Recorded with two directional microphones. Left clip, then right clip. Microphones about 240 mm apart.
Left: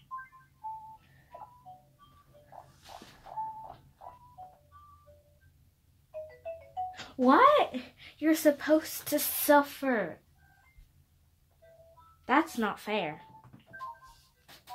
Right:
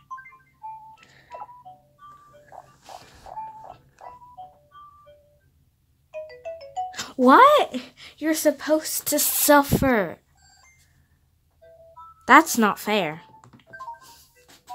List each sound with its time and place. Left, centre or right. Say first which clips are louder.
6.9 s speech: right 9 dB; centre
12.3 s speech: right 13 dB; right